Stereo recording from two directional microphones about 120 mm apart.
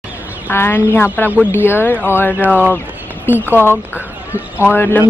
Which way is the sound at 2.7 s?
15° left (ahead or behind).